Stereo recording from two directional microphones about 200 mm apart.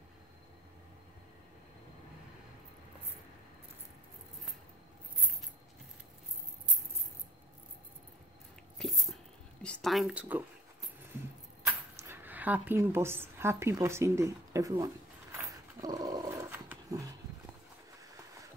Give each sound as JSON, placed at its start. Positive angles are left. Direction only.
{"t": 8.7, "sound": "whispering", "side_deg": 0}
{"t": 11.1, "sound": "keys jangling", "side_deg": -15}
{"t": 15.3, "sound": "dog", "side_deg": -20}